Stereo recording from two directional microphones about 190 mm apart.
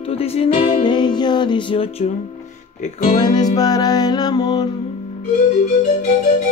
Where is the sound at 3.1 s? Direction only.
25° left (ahead or behind).